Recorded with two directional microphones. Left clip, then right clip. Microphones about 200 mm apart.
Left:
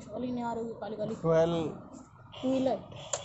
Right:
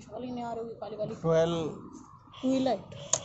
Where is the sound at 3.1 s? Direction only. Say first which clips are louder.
Right 5 dB; 50° right (ahead or behind).